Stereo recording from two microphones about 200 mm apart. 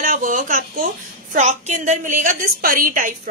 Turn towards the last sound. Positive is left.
turn(degrees=-45)  # may be behind; listen again after turning